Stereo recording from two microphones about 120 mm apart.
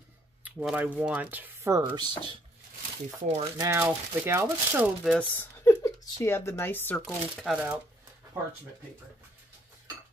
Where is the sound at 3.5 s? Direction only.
20° right (ahead or behind).